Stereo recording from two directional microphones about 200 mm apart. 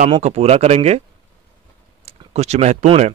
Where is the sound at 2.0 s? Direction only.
30° right (ahead or behind).